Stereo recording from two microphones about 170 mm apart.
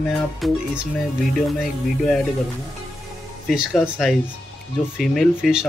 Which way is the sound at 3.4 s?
Centre (ahead or behind).